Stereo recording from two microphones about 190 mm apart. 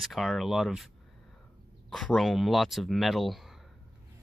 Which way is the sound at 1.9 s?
Centre (ahead or behind).